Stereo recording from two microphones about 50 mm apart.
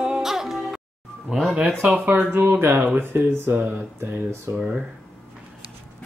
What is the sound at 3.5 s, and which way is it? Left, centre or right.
Speech, right.